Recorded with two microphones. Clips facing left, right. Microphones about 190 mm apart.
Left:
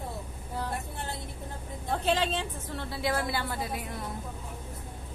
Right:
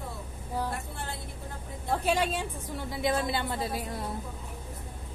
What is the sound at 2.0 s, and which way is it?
A woman's voice, 10° right (ahead or behind).